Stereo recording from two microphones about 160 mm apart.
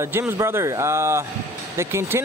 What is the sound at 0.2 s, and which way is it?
Speech, 15° right (ahead or behind).